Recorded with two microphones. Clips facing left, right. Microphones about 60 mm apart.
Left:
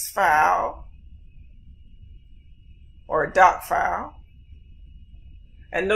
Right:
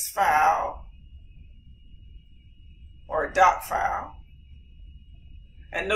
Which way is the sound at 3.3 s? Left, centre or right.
Left.